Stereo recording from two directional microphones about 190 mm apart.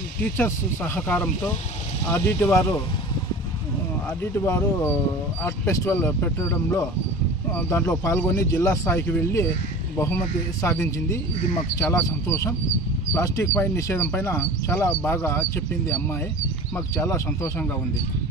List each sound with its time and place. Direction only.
0.2 s speech: 10° left (ahead or behind)
4.2 s speech: 15° left (ahead or behind)
10.6 s speech: 15° left (ahead or behind)